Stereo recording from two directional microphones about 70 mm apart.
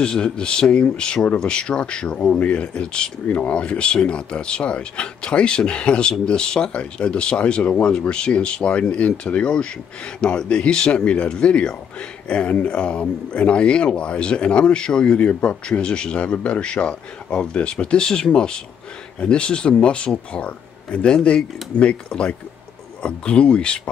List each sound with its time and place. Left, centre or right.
0.0 s speech: centre